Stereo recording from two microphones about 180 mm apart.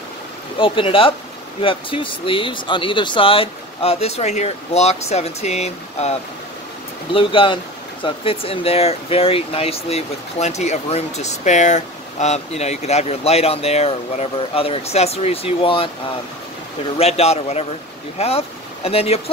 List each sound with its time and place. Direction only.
0.6 s speech: 30° left (ahead or behind)
17.0 s speech: 35° left (ahead or behind)